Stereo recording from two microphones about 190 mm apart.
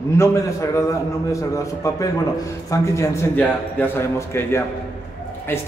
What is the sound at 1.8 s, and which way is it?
A man's voice, 15° left (ahead or behind).